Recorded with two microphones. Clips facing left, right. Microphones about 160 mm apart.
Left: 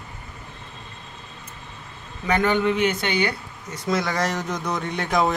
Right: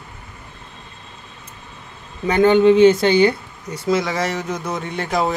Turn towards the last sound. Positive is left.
turn(degrees=-5)  # may be behind; listen again after turning